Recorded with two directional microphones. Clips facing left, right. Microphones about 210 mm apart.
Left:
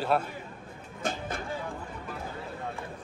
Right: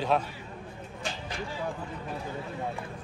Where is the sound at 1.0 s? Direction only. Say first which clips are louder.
Left 4 dB; 55° left (ahead or behind).